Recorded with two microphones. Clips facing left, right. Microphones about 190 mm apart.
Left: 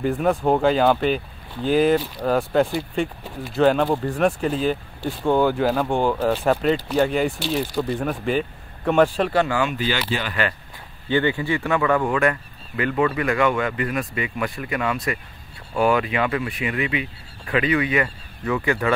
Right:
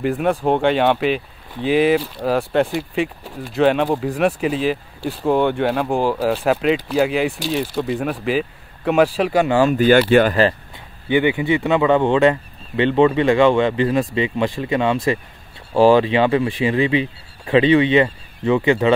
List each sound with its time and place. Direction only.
0.0 s speech: centre (ahead or behind)
9.5 s speech: 35° right (ahead or behind)
9.8 s speech: 50° right (ahead or behind)
11.1 s speech: 15° right (ahead or behind)